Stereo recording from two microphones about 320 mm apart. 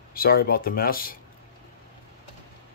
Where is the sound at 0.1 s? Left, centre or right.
Left.